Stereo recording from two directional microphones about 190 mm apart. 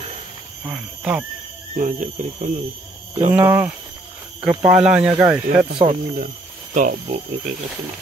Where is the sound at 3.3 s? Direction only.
10° right (ahead or behind).